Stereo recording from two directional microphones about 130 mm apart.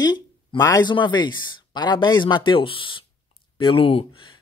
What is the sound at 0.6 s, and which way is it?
Speech, 25° left (ahead or behind).